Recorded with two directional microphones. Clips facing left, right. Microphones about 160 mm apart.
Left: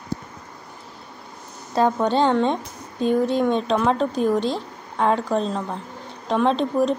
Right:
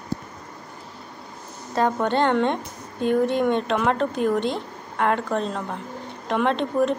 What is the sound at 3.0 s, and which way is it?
Speech, 60° right (ahead or behind).